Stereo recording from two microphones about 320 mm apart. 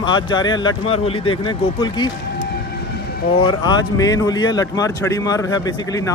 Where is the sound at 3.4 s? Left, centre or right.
Centre.